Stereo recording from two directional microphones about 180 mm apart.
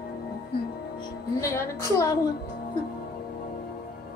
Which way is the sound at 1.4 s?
15° left (ahead or behind).